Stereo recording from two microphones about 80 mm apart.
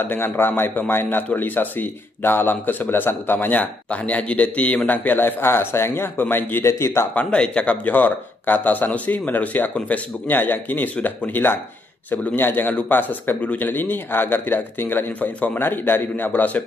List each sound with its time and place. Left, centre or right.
0.0 s a man's voice: left
7.2 s a man's voice: centre